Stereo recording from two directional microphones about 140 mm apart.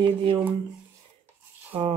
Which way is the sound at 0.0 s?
40° right (ahead or behind).